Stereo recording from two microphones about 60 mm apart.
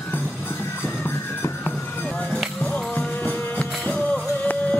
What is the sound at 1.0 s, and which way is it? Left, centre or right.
Music, left.